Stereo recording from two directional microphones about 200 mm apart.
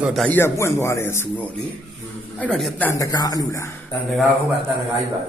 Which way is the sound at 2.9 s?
20° left (ahead or behind).